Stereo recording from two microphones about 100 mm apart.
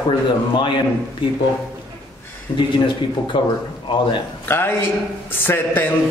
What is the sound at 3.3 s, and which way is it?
Speech, 50° left (ahead or behind).